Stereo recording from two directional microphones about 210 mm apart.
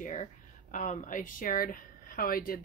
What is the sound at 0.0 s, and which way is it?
Speech, 35° left (ahead or behind).